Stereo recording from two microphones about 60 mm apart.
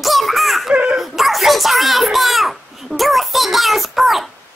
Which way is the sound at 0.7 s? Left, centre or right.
Centre.